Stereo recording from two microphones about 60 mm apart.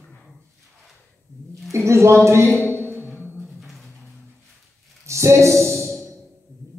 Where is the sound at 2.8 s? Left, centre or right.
Right.